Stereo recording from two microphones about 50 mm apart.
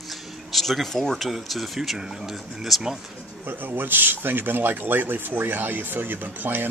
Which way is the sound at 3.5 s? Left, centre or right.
Right.